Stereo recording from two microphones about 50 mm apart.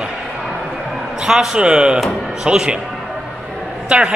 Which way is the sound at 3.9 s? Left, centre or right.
Centre.